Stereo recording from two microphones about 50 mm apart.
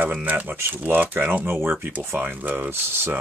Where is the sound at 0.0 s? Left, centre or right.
Right.